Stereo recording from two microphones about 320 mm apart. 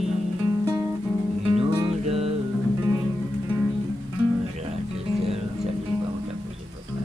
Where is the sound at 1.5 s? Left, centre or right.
Centre.